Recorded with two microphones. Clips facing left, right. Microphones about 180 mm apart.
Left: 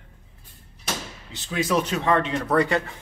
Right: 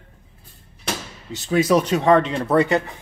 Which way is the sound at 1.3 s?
40° right (ahead or behind).